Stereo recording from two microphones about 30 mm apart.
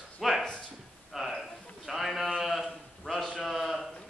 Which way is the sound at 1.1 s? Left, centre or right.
Centre.